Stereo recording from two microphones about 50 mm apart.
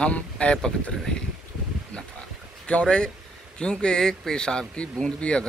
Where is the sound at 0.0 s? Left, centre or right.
Left.